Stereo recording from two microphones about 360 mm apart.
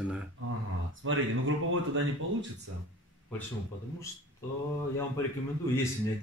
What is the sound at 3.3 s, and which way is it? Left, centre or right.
Speech, centre.